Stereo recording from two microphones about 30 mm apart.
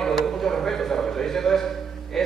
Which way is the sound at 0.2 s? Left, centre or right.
Centre.